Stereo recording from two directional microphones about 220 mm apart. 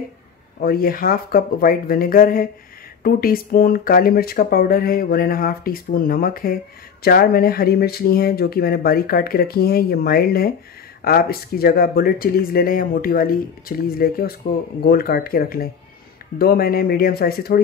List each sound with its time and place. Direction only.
0.6 s speech: 40° left (ahead or behind)